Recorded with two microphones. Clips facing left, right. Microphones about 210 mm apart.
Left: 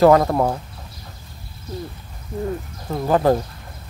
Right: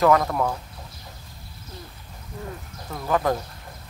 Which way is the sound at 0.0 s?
35° left (ahead or behind).